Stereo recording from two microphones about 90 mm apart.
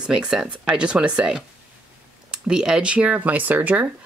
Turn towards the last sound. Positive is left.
turn(degrees=-20)  # may be behind; listen again after turning